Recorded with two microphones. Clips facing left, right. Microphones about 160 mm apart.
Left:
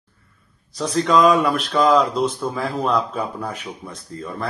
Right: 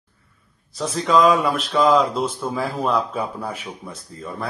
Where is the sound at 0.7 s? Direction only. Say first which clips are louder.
Left 1 dB; centre (ahead or behind).